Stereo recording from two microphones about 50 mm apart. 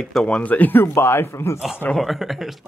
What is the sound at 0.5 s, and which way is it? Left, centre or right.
Speech, left.